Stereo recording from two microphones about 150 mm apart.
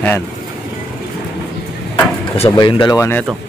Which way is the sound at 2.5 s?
30° left (ahead or behind).